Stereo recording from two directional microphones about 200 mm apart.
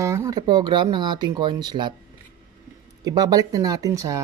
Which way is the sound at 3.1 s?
20° right (ahead or behind).